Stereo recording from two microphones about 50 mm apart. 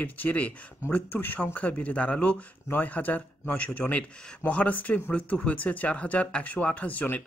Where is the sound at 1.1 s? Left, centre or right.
Left.